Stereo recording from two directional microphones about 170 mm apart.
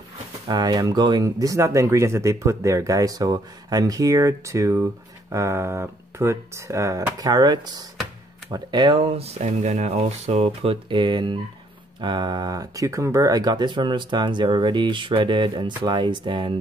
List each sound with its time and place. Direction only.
0.5 s speech: 25° right (ahead or behind)